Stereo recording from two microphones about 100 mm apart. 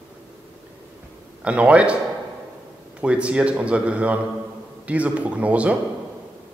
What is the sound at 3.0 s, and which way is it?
A man's voice, 10° right (ahead or behind).